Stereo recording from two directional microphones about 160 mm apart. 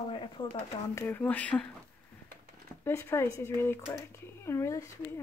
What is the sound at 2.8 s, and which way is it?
Speech, 15° left (ahead or behind).